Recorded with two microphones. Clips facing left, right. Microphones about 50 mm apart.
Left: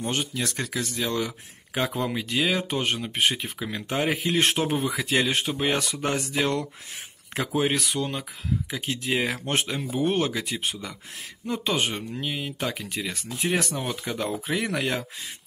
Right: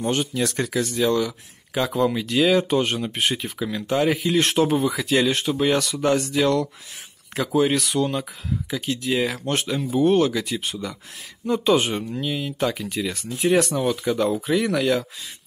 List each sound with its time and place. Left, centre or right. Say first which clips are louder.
0.0 s speech: right 5 dB; centre
1.1 s speech: right 5 dB; left
2.0 s speech: right 6 dB; centre
7.7 s speech: right 5 dB; centre
12.2 s speech: right 5 dB; centre